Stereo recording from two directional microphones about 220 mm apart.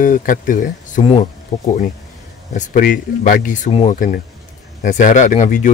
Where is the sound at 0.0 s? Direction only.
35° left (ahead or behind).